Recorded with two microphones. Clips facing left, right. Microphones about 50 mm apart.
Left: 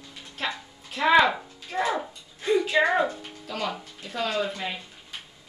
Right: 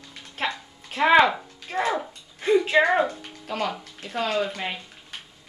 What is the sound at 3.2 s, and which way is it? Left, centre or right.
Music, right.